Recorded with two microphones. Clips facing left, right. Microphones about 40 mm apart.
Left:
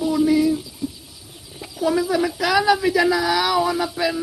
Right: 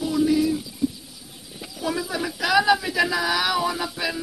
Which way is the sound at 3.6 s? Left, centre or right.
Centre.